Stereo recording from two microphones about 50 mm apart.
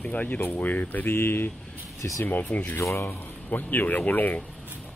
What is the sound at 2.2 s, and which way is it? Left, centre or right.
Speech, left.